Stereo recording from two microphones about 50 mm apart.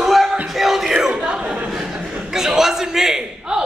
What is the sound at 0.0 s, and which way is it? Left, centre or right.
Music, centre.